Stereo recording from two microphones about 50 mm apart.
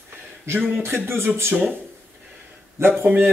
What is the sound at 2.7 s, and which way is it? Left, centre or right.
Speech, right.